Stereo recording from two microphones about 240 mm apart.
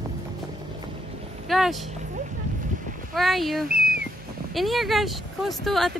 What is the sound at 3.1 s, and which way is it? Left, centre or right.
Speech, centre.